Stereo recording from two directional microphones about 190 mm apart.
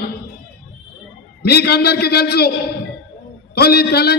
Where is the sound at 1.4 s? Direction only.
60° left (ahead or behind).